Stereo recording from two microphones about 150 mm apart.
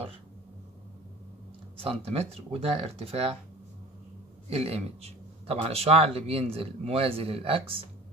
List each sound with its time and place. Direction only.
1.8 s speech: 40° right (ahead or behind)
4.5 s speech: 40° right (ahead or behind)